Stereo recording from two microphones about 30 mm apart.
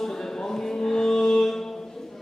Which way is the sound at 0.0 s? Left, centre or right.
Centre.